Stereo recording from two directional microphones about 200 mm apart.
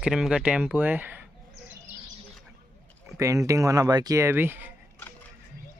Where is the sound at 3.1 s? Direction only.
15° right (ahead or behind).